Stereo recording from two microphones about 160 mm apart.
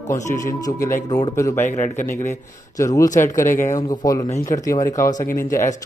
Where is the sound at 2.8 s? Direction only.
20° left (ahead or behind).